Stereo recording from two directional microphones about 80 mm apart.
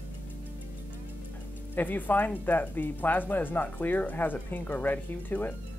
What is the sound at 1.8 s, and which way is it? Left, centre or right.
Speech, left.